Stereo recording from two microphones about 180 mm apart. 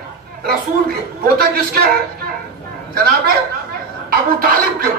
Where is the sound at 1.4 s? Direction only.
60° right (ahead or behind).